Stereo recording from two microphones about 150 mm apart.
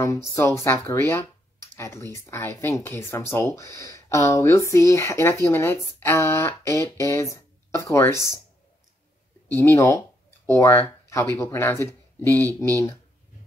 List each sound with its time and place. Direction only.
0.0 s speech: 20° left (ahead or behind)
9.5 s speech: 15° left (ahead or behind)